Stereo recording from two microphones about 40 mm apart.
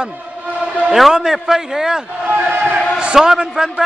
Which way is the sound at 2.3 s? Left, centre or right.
Right.